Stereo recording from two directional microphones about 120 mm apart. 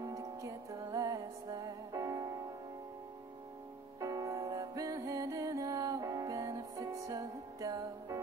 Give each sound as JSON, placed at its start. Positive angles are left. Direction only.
{"t": 0.0, "sound": "music", "side_deg": -30}
{"t": 4.0, "sound": "music", "side_deg": -30}